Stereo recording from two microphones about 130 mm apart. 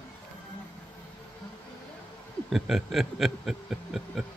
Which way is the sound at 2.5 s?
Centre (ahead or behind).